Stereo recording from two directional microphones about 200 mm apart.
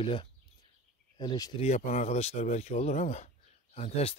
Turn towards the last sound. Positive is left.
turn(degrees=30)  # may be behind; listen again after turning